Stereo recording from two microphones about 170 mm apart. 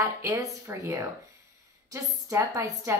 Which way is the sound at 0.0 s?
15° right (ahead or behind).